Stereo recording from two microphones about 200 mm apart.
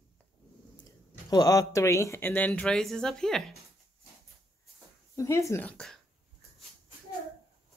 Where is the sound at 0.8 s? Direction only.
20° left (ahead or behind); by 3.5 s centre (ahead or behind).